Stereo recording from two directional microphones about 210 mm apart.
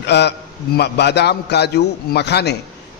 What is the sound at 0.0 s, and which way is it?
A man's voice, 55° left (ahead or behind).